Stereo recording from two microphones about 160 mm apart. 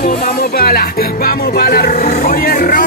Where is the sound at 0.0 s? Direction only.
70° left (ahead or behind).